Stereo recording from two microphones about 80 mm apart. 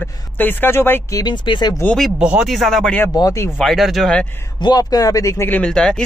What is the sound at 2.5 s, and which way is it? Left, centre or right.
Speech, centre.